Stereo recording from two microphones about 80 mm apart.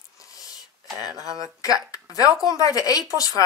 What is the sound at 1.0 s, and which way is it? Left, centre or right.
Speech, left.